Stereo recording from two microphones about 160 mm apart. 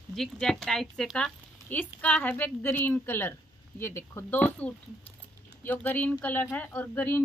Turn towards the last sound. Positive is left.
turn(degrees=15)  # may be behind; listen again after turning